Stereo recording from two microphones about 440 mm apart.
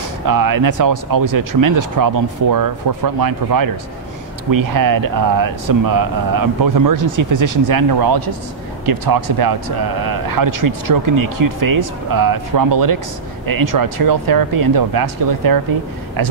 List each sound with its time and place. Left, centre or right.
0.3 s speech: right